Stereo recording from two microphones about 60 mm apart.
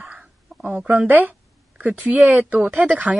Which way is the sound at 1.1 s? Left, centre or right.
Right.